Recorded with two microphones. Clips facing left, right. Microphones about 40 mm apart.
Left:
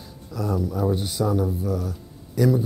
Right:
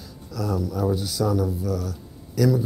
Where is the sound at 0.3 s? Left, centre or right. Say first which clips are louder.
Left 1 dB; left.